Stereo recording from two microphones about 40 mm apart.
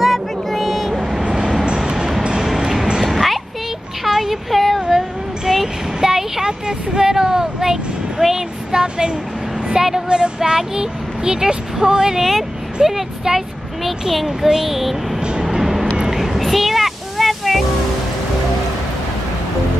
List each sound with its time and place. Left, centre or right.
0.0 s vehicle: centre
1.9 s train: centre
2.2 s music: right
2.5 s a sound: centre
4.0 s child singing: centre
4.8 s a sound: centre
8.8 s vehicle: right
10.0 s a sound: right
12.2 s speech: centre
12.8 s a child's voice: centre
13.8 s speech: centre
15.6 s music: centre